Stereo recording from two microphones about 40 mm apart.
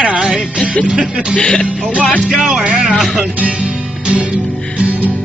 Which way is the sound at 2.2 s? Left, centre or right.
Right.